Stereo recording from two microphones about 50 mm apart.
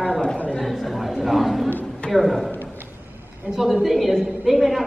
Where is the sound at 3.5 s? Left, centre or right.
Centre.